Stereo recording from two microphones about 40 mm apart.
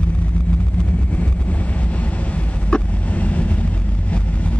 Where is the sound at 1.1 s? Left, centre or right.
Left.